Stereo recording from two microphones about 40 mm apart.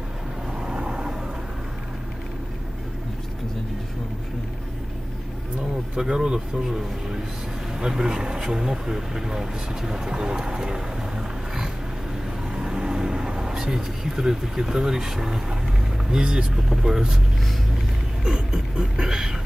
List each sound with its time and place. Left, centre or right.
0.7 s vehicle: right
5.9 s speech: centre
7.8 s speech: centre
12.5 s vehicle: centre
16.1 s speech: right
18.2 s speech: centre